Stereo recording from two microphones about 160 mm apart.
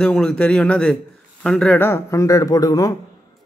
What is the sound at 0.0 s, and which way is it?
Speech, 5° left (ahead or behind).